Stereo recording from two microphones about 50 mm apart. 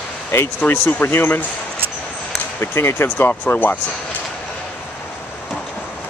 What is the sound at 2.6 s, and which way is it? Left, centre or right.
Speech, left.